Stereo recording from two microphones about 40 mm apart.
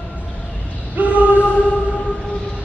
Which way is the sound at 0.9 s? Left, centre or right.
Right.